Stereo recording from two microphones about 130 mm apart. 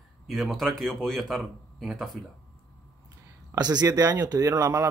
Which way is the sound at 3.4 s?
30° right (ahead or behind).